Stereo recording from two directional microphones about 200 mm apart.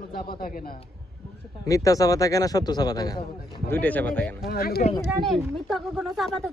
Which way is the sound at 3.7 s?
10° left (ahead or behind).